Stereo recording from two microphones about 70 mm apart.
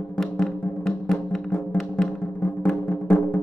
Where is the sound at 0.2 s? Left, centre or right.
Centre.